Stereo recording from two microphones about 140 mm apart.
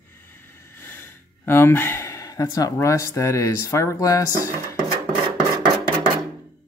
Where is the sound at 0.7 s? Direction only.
15° left (ahead or behind).